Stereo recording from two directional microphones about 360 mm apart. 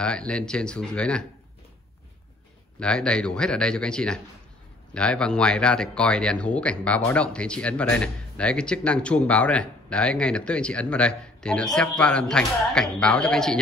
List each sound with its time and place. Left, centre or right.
0.0 s speech: centre
2.8 s speech: centre